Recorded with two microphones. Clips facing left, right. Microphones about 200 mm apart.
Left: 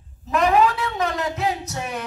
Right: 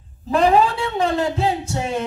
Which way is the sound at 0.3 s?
30° right (ahead or behind).